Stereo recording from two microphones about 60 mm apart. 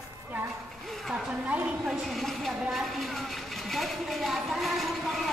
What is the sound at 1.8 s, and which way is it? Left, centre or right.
Speech, centre.